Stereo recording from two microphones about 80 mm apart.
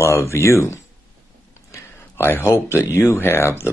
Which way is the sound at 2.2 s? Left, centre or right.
Left.